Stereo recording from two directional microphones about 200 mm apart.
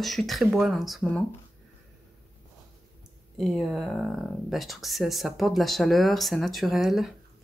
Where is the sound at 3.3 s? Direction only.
Centre (ahead or behind).